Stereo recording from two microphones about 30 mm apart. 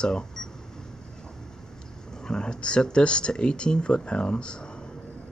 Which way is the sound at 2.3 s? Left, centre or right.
Left.